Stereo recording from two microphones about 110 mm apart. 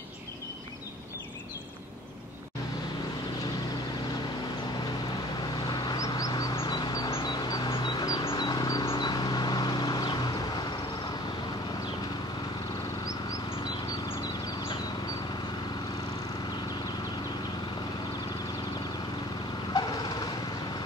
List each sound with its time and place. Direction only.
5.7 s a sound: 35° left (ahead or behind)
8.8 s vehicle: 45° left (ahead or behind)
19.7 s vehicle: 40° left (ahead or behind)